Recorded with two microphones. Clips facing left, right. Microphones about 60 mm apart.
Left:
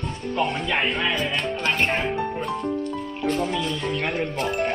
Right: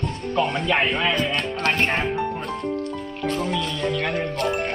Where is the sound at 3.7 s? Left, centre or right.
Right.